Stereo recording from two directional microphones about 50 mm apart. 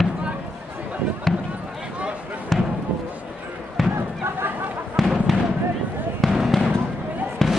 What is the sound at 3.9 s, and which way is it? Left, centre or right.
Basketball bounce, right.